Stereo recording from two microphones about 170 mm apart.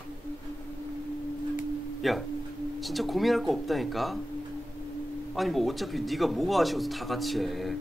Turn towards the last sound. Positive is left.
turn(degrees=0)  # may be behind; listen again after turning